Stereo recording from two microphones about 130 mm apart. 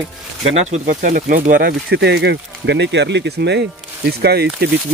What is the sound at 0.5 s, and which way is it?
Speech, 60° right (ahead or behind).